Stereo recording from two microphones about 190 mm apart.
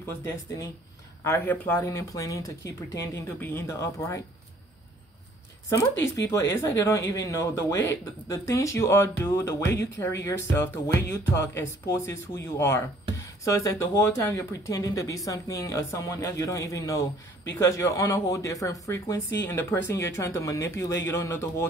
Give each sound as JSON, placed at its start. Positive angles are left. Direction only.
{"t": 1.2, "sound": "speech", "side_deg": 10}
{"t": 6.5, "sound": "speech", "side_deg": 15}